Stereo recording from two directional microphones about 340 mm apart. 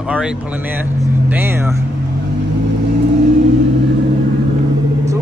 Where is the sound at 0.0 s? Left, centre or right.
Centre.